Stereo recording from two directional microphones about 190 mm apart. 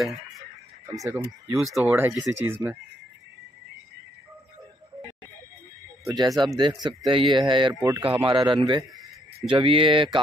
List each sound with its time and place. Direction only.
0.1 s a sound: 35° right (ahead or behind)
0.9 s speech: 15° right (ahead or behind)
1.7 s speech: 5° right (ahead or behind)
6.0 s speech: 20° right (ahead or behind)